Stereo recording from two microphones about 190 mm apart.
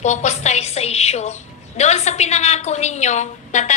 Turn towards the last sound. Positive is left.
turn(degrees=40)  # may be behind; listen again after turning